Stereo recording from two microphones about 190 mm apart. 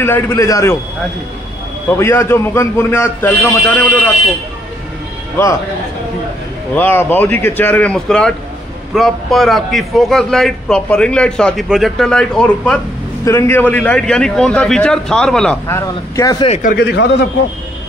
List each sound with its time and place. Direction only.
0.0 s a man's voice: 15° left (ahead or behind)
1.9 s a man's voice: 15° left (ahead or behind)
6.7 s a man's voice: 10° left (ahead or behind)
13.2 s a man's voice: 15° left (ahead or behind)
15.6 s a man's voice: 15° left (ahead or behind)
16.9 s a man's voice: 65° left (ahead or behind)